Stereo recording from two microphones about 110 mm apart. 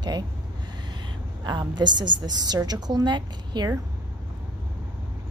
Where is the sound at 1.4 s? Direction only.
40° right (ahead or behind).